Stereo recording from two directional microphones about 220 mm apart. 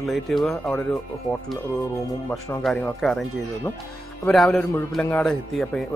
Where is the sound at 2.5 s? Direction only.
5° left (ahead or behind).